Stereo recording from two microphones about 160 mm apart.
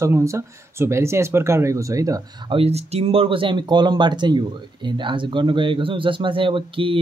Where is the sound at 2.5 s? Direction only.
40° right (ahead or behind).